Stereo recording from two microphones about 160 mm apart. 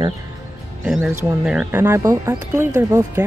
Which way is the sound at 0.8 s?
10° right (ahead or behind).